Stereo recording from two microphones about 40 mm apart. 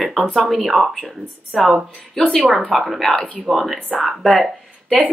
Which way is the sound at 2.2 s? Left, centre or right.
Centre.